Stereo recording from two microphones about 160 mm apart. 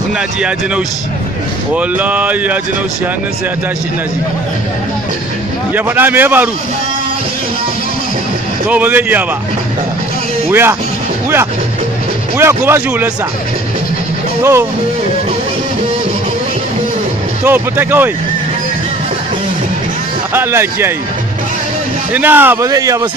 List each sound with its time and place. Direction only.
1.7 s speech: 10° right (ahead or behind)
5.8 s speech: 10° right (ahead or behind)
8.6 s speech: 10° right (ahead or behind)
10.5 s speech: 15° right (ahead or behind)
12.4 s speech: 15° right (ahead or behind)
14.4 s speech: 15° right (ahead or behind)
17.5 s speech: 15° right (ahead or behind)
20.3 s speech: 15° right (ahead or behind)
22.1 s speech: 10° right (ahead or behind)